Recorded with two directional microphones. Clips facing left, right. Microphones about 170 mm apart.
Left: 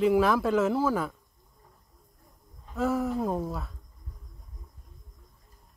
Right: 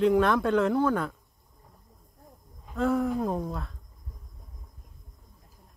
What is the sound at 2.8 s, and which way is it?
Speech, 5° left (ahead or behind).